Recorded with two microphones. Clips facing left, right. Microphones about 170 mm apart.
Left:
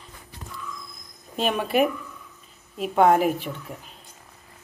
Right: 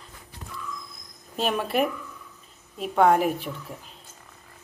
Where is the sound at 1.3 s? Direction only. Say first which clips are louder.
Left 2 dB; centre (ahead or behind).